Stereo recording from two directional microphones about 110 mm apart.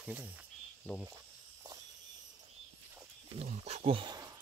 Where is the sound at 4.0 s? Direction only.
40° right (ahead or behind).